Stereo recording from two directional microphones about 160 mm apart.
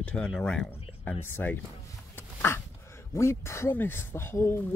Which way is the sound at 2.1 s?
15° left (ahead or behind).